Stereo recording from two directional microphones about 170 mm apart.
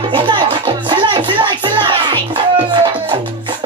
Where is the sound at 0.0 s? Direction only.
30° right (ahead or behind).